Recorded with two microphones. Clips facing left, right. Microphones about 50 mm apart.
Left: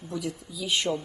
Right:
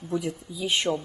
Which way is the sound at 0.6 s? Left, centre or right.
Right.